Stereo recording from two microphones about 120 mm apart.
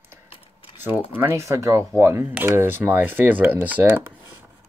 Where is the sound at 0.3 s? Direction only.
55° left (ahead or behind).